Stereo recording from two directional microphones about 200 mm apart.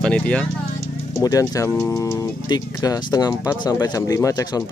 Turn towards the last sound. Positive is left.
turn(degrees=15)  # may be behind; listen again after turning